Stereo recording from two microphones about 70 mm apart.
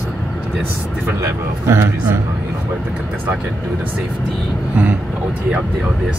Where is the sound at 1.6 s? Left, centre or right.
Right.